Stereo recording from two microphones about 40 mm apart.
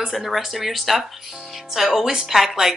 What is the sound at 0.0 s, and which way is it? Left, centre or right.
Speech, centre.